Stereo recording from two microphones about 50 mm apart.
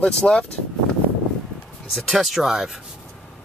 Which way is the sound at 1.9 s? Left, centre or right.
Centre.